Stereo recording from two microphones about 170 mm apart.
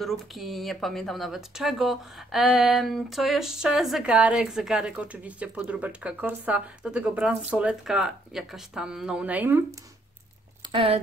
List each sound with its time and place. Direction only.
0.0 s speech: centre (ahead or behind)
10.7 s speech: 35° right (ahead or behind)